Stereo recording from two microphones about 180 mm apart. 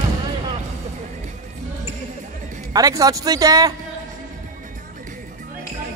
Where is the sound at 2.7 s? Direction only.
20° right (ahead or behind).